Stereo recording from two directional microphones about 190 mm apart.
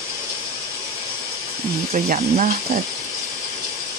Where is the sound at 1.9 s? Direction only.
45° right (ahead or behind).